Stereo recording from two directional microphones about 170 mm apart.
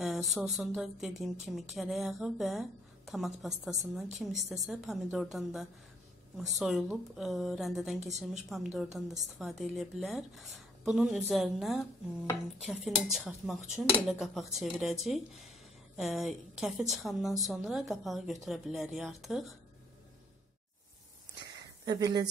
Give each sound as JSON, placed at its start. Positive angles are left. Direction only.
{"t": 0.0, "sound": "speech", "side_deg": 0}
{"t": 21.8, "sound": "speech", "side_deg": -25}